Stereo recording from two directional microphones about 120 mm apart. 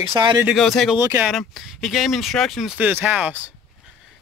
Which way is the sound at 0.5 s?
Centre (ahead or behind).